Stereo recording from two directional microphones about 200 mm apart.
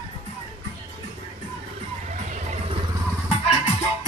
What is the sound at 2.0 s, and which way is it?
Music, 35° right (ahead or behind).